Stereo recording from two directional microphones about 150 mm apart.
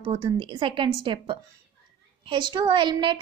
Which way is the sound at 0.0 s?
40° right (ahead or behind).